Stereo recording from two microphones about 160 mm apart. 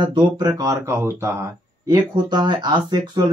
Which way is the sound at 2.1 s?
25° right (ahead or behind).